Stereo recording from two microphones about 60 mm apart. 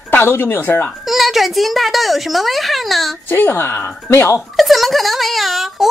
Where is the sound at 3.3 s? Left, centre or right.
Left.